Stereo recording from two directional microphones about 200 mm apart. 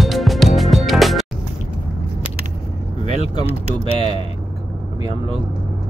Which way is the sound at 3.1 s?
30° left (ahead or behind).